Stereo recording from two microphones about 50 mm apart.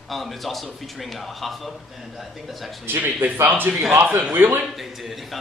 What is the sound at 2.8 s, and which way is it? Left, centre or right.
Speech, right.